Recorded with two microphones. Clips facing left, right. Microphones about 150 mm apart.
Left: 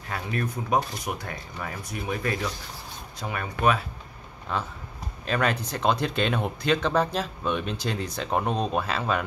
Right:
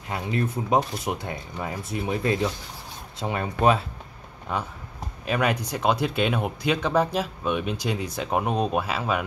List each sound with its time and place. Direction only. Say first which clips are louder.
0.1 s speech: right 3 dB; 25° right (ahead or behind)
4.5 s speech: right 1 dB; 15° right (ahead or behind)